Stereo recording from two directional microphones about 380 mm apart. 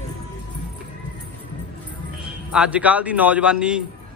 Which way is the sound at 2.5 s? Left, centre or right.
Centre.